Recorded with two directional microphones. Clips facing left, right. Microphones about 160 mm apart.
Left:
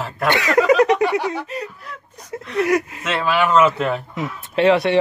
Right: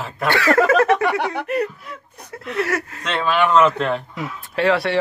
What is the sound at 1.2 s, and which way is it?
Speech, 60° right (ahead or behind).